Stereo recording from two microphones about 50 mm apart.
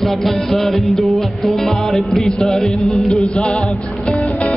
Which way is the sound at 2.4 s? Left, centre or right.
Centre.